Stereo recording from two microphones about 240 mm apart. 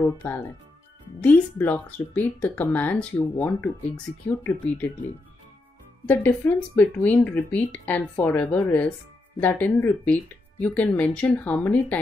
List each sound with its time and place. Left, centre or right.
0.0 s speech: centre
6.0 s speech: centre